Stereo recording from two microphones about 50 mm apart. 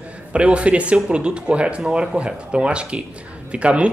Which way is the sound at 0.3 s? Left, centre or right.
Right.